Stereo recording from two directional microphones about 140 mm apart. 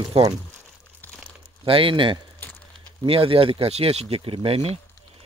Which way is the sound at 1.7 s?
40° right (ahead or behind).